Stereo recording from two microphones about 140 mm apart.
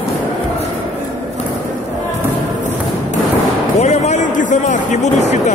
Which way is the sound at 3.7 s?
55° left (ahead or behind).